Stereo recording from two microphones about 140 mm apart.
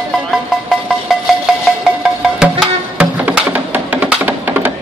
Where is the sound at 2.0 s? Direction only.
5° right (ahead or behind).